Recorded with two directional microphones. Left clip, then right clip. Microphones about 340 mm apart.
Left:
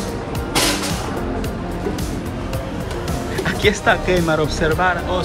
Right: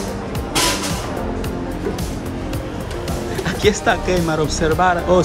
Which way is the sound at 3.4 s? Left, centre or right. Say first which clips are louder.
Even; centre.